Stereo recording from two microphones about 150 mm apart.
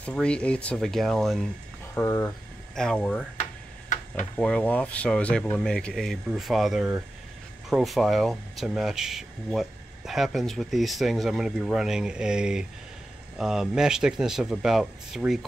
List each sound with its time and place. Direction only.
0.0 s speech: 5° left (ahead or behind)
2.0 s speech: 20° left (ahead or behind)
2.7 s speech: 5° left (ahead or behind)
4.4 s speech: 5° left (ahead or behind)